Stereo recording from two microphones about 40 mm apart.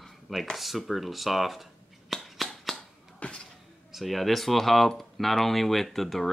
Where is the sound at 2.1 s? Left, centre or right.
Centre.